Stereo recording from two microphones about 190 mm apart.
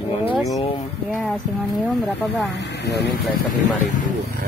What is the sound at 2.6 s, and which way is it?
Speech, 65° left (ahead or behind).